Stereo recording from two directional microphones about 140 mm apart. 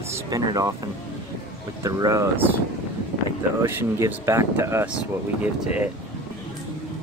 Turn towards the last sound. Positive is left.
turn(degrees=-10)  # may be behind; listen again after turning